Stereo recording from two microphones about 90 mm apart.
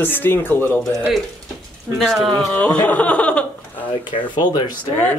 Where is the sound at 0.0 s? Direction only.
25° left (ahead or behind).